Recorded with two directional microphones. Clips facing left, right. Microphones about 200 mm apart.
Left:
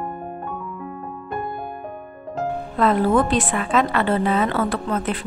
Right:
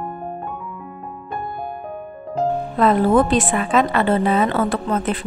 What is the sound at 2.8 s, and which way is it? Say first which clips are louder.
A woman's voice: right 2 dB; 20° right (ahead or behind).